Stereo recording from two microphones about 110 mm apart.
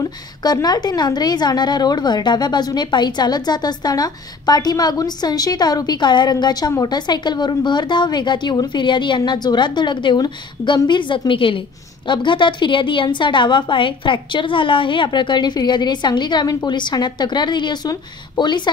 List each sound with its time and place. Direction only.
0.0 s a woman's voice: 35° left (ahead or behind)